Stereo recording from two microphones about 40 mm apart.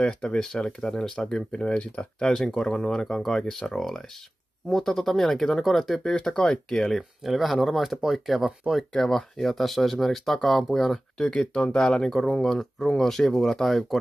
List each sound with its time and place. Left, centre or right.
0.1 s speech: left
0.4 s speech: centre
2.1 s speech: centre
6.5 s speech: centre
7.2 s speech: centre
8.9 s speech: centre
11.1 s speech: centre